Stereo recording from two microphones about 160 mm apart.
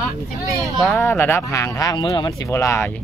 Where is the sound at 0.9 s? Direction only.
15° left (ahead or behind).